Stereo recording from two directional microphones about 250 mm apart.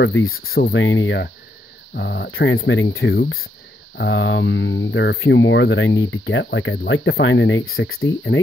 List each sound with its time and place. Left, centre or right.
0.0 s speech: left
0.6 s speech: left